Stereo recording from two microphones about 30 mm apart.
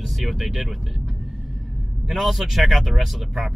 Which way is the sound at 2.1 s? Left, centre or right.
Centre.